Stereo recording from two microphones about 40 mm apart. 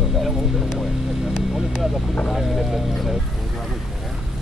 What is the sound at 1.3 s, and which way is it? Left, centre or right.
Vehicle, centre.